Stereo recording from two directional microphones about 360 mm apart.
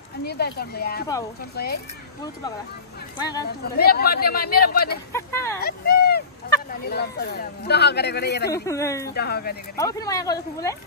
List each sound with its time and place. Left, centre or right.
0.2 s speech: left
3.2 s speech: centre
3.6 s speech: left
5.1 s speech: centre
5.6 s a sound: left
6.9 s speech: left
8.5 s speech: centre
9.1 s speech: left
9.8 s speech: centre